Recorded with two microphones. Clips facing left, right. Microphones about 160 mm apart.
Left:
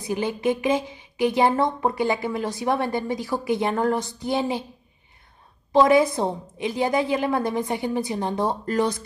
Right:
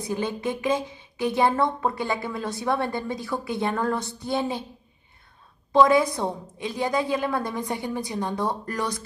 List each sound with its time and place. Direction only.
0.0 s a woman's voice: 15° left (ahead or behind)
5.7 s a woman's voice: 20° left (ahead or behind)